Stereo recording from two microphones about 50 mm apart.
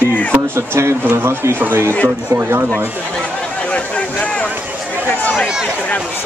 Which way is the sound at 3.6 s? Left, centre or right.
Left.